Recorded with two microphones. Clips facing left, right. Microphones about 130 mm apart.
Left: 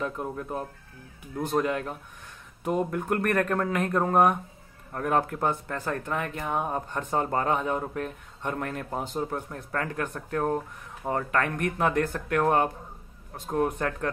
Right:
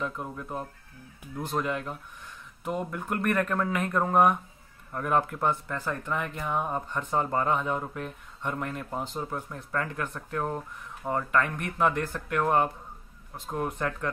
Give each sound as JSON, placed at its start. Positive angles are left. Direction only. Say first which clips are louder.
{"t": 0.0, "sound": "speech", "louder": "left 3 dB", "side_deg": 40}